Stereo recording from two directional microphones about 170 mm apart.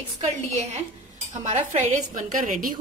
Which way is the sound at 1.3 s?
45° right (ahead or behind).